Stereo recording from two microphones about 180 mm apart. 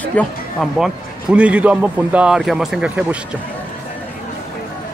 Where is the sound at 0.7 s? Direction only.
5° right (ahead or behind).